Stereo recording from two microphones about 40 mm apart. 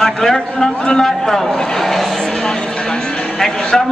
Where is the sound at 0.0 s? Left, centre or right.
Centre.